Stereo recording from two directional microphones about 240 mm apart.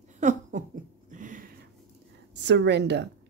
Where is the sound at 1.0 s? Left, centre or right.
Right.